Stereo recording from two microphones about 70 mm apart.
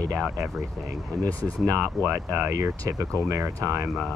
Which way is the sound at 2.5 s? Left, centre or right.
Right.